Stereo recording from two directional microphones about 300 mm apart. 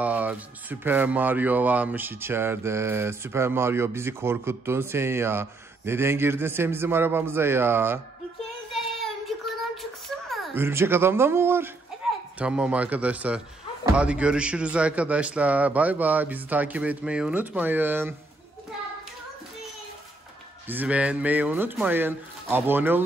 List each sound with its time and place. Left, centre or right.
0.0 s speech: centre
8.7 s child singing: centre
12.4 s a man's voice: centre
20.6 s speech: centre